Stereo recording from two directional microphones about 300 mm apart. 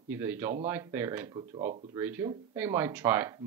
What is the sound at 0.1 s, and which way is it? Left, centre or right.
Speech, centre.